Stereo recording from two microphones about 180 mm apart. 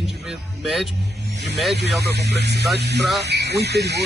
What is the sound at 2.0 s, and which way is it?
Speech, 65° right (ahead or behind).